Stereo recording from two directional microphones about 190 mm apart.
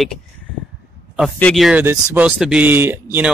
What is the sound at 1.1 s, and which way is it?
Speech, 5° left (ahead or behind).